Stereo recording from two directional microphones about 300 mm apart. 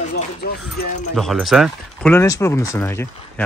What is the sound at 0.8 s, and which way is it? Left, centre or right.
Speech, left.